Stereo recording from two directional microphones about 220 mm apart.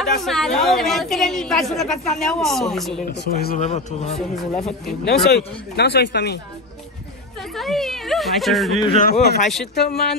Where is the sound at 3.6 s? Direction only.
30° left (ahead or behind).